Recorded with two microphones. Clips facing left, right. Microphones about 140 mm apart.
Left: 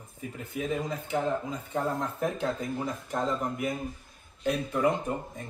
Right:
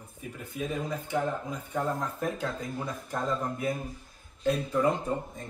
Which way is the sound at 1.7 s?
25° left (ahead or behind).